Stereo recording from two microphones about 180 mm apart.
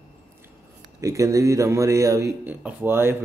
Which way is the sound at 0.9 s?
15° right (ahead or behind).